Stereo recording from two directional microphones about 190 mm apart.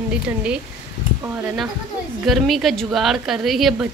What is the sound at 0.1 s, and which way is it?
Speech, 5° right (ahead or behind).